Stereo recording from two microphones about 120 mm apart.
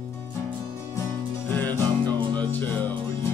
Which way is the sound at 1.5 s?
15° left (ahead or behind).